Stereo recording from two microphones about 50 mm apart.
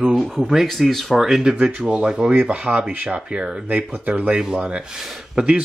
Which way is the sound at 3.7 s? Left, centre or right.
Right.